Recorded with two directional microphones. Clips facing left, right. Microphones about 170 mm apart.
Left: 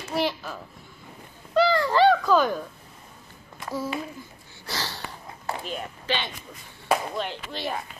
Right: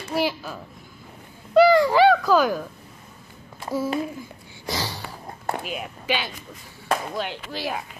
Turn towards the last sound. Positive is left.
turn(degrees=-5)  # may be behind; listen again after turning